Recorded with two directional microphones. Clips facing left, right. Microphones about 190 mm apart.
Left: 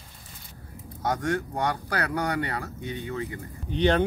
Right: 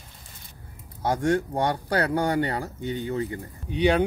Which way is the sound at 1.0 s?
30° right (ahead or behind).